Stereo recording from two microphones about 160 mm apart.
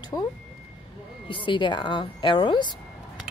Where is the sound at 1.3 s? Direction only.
30° left (ahead or behind).